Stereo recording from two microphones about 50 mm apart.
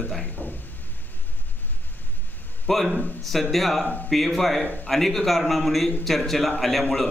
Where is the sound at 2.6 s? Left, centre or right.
Centre.